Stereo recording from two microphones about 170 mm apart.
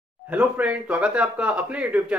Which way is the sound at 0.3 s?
10° right (ahead or behind).